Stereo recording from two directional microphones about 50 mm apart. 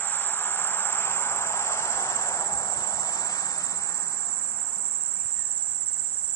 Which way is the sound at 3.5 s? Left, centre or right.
Left.